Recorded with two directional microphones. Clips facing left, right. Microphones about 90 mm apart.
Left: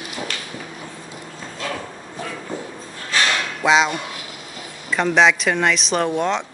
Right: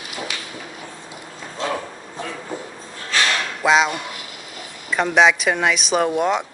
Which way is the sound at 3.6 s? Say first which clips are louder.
Even; centre (ahead or behind).